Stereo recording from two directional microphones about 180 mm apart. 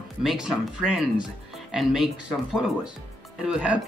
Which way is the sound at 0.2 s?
Centre (ahead or behind).